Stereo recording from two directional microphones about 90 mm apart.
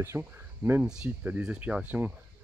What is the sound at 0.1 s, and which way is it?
Speech, 35° right (ahead or behind).